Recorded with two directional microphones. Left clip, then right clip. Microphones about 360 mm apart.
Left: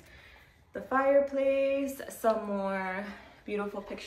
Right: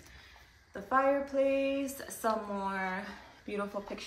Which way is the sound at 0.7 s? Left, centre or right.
Centre.